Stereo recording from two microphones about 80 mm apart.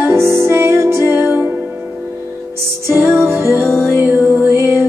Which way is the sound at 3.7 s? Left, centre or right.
Centre.